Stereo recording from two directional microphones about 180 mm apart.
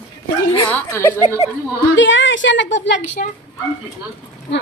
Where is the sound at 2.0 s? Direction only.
90° left.